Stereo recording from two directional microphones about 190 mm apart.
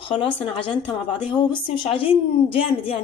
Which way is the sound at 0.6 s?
25° left (ahead or behind).